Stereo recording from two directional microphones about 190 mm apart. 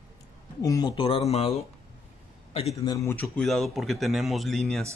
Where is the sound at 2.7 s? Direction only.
20° left (ahead or behind); by 4.8 s centre (ahead or behind).